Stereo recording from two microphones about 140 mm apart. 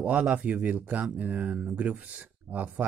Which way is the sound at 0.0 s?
10° right (ahead or behind).